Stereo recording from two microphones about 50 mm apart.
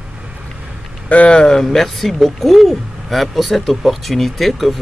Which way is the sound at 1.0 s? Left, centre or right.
Left.